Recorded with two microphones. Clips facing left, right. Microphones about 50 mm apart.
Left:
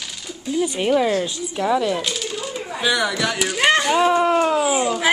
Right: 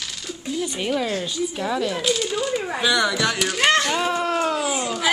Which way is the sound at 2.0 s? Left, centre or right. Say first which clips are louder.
Right 4 dB; centre.